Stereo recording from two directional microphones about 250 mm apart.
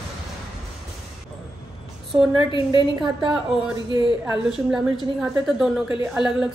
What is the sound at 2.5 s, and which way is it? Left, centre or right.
Speech, centre.